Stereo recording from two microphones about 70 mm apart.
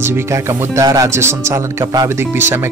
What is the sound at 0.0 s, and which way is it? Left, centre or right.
Speech, right.